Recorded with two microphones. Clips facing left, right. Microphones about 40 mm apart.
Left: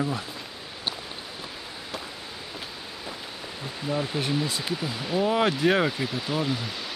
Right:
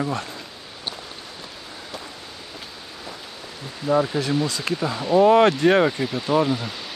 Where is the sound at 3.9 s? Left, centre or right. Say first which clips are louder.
Right 9 dB; centre.